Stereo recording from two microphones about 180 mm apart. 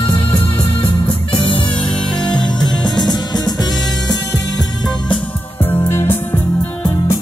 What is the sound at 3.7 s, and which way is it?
Music, 90° left.